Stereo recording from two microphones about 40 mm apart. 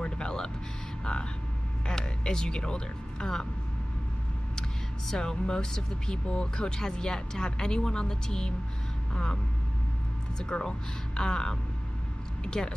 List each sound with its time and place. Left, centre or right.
0.0 s a sound: centre
1.9 s speech: centre
4.6 s speech: centre
6.1 s speech: left
10.4 s speech: left